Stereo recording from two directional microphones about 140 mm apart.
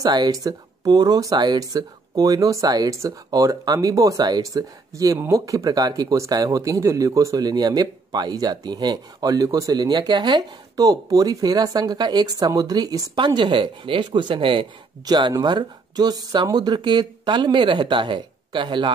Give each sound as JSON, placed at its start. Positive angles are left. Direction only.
{"t": 0.0, "sound": "speech", "side_deg": -25}